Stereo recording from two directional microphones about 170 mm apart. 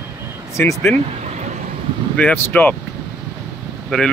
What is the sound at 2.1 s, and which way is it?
Speech, 10° left (ahead or behind).